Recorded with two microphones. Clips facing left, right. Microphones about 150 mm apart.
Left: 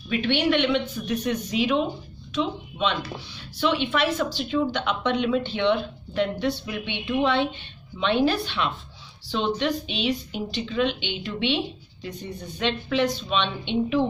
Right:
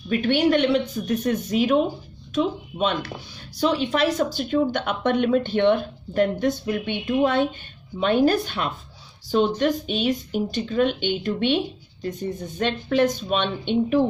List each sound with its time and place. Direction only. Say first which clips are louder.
0.1 s speech: right 3 dB; 45° right (ahead or behind)